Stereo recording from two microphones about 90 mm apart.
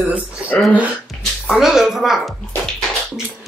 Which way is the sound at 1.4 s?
5° right (ahead or behind).